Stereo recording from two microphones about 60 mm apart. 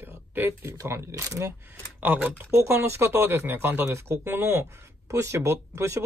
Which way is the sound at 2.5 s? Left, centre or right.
Right.